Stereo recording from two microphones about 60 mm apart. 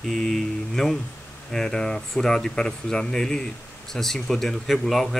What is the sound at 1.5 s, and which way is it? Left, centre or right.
Speech, centre.